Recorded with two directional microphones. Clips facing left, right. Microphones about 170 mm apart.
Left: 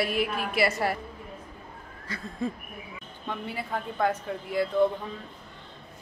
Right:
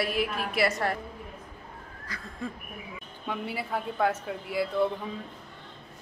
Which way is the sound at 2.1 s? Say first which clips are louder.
Left 5 dB; 25° left (ahead or behind).